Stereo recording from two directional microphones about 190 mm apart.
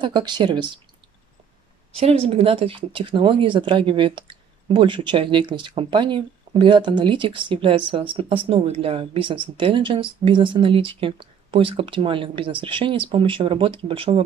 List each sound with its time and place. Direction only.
0.0 s speech: 25° right (ahead or behind)
2.0 s speech: 30° right (ahead or behind)